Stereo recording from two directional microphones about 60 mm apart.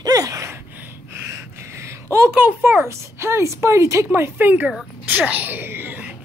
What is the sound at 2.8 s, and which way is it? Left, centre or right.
A woman's voice, right.